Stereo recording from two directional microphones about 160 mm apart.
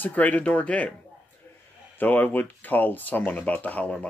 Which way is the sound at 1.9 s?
10° left (ahead or behind).